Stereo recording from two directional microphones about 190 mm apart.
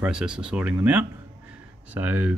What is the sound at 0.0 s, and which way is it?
Speech, 5° right (ahead or behind).